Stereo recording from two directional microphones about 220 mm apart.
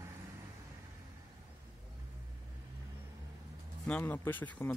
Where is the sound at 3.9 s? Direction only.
5° left (ahead or behind).